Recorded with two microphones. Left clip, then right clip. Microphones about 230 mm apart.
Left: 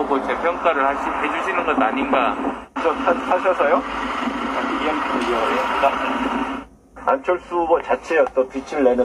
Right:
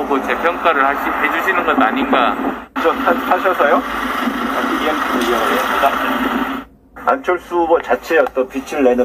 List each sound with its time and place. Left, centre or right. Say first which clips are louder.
0.1 s speech: right 4 dB; right